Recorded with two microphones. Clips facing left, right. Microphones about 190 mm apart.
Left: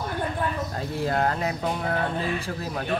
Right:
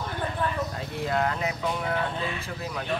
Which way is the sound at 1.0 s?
40° left (ahead or behind).